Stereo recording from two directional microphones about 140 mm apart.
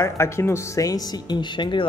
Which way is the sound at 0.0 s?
20° left (ahead or behind).